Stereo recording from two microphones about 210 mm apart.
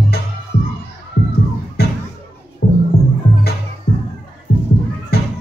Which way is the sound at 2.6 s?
55° left (ahead or behind).